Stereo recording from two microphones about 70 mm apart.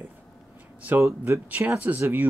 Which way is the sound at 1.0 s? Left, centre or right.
Right.